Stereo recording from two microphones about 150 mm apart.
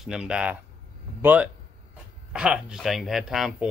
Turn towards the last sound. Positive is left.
turn(degrees=-5)  # may be behind; listen again after turning